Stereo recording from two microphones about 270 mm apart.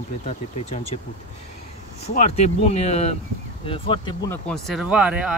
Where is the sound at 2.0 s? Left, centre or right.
Left.